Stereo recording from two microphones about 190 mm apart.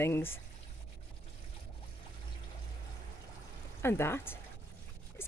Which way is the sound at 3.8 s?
15° left (ahead or behind).